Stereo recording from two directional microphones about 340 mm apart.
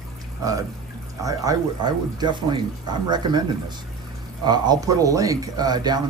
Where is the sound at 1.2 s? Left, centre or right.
Centre.